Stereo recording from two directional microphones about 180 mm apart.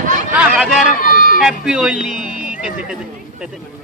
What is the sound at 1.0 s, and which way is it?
Run, 50° left (ahead or behind).